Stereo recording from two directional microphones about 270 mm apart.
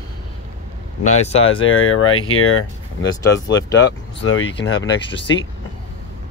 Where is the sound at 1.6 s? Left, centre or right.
Left.